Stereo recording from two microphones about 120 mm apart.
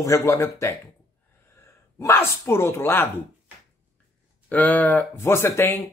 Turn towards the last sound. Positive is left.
turn(degrees=20)  # may be behind; listen again after turning